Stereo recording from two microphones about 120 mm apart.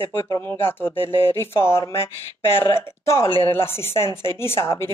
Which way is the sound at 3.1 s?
20° left (ahead or behind).